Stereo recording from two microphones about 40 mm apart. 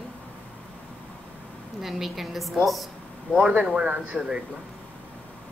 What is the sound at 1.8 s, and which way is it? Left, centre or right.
Speech, centre.